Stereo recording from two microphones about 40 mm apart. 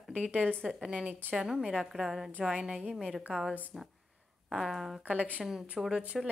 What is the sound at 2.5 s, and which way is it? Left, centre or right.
Speech, right.